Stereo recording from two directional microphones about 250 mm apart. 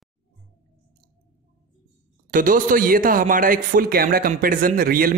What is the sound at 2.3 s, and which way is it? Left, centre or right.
A man's voice, right.